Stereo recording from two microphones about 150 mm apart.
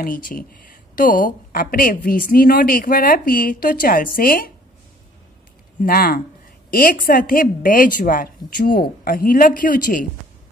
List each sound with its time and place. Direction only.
0.0 s a woman's voice: 70° left (ahead or behind)
5.8 s a woman's voice: 75° left (ahead or behind)